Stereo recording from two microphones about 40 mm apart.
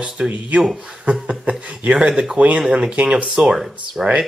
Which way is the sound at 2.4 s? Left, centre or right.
Right.